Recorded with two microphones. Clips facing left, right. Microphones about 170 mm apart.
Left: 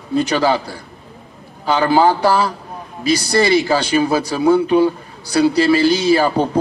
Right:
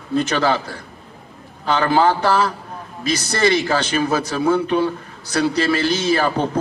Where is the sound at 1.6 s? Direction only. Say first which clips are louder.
Left 3 dB; 5° left (ahead or behind).